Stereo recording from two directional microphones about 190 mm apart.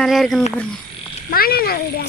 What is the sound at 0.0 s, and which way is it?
Speech, centre (ahead or behind).